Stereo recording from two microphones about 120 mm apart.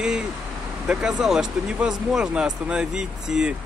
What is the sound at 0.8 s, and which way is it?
Speech, 5° right (ahead or behind).